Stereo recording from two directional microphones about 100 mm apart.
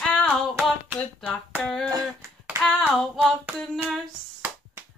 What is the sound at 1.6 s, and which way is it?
Hands, 5° left (ahead or behind).